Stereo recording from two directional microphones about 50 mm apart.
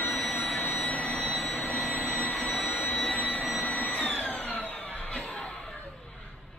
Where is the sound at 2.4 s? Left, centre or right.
Left.